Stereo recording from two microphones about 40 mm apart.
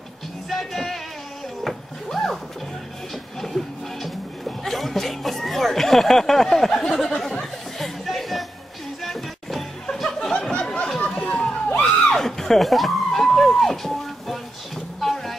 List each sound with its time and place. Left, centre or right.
0.5 s music: centre
3.3 s speech: centre
7.2 s chatter: centre
9.0 s music: centre
10.6 s a sound: left
11.8 s a sound: centre